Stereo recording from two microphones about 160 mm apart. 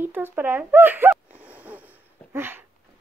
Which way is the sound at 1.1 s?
10° right (ahead or behind).